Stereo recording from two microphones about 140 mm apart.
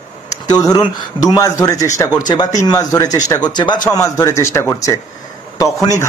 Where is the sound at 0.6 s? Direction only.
30° left (ahead or behind).